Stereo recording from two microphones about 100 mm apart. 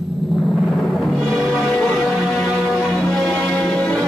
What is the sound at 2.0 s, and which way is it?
Music, 5° right (ahead or behind).